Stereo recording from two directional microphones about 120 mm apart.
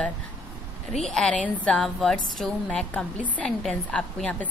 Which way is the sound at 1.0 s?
5° left (ahead or behind).